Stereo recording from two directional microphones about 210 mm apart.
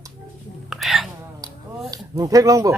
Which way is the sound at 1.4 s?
15° right (ahead or behind).